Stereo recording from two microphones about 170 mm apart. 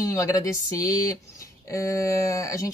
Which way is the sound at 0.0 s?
20° left (ahead or behind).